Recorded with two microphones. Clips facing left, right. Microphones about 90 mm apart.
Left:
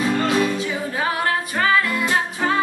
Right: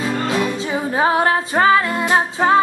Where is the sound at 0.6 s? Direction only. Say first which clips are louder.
Right 5 dB; 30° right (ahead or behind).